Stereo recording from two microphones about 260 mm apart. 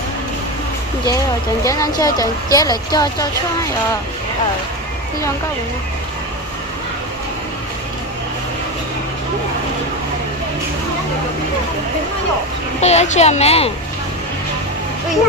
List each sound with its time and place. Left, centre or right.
1.6 s speech: centre
12.8 s a woman's voice: left